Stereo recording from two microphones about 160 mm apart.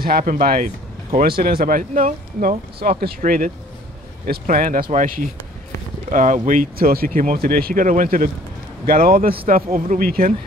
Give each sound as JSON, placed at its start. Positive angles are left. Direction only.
{"t": 0.2, "sound": "speech", "side_deg": -60}